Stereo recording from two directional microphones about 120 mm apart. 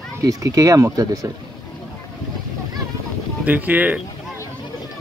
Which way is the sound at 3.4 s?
15° right (ahead or behind).